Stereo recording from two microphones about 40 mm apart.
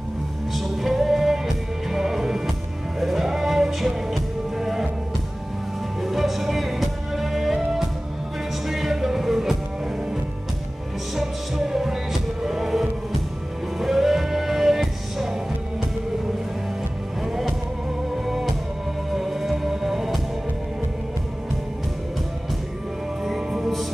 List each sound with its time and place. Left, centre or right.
0.5 s music: centre
6.0 s music: centre
11.1 s music: centre
17.2 s music: centre
23.2 s music: centre